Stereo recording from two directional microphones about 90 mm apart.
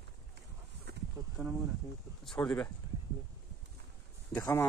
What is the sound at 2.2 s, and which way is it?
Speech, 10° left (ahead or behind).